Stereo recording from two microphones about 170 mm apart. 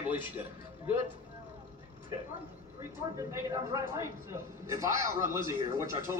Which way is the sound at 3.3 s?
20° right (ahead or behind).